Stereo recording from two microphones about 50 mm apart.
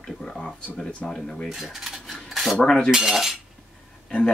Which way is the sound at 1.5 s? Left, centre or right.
Centre.